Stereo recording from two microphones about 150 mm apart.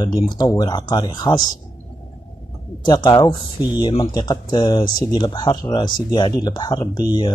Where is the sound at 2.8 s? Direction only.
30° left (ahead or behind).